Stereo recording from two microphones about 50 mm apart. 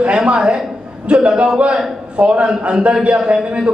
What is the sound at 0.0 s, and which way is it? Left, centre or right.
A woman's voice, right.